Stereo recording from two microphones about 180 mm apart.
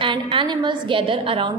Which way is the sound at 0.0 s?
30° right (ahead or behind).